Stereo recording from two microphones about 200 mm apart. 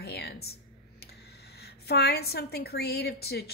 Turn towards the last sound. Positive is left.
turn(degrees=50)  # may be behind; listen again after turning